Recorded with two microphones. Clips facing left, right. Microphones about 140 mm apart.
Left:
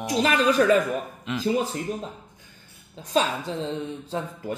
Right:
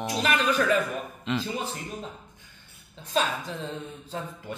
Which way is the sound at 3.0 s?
35° left (ahead or behind).